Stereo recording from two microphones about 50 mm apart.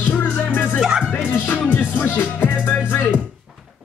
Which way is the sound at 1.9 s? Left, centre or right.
Left.